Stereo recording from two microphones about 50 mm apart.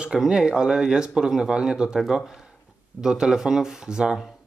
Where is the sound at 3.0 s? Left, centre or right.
Centre.